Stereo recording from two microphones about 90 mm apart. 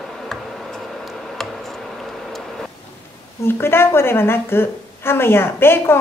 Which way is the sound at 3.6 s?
25° left (ahead or behind).